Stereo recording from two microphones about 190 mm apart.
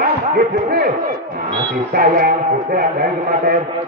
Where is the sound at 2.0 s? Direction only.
50° right (ahead or behind).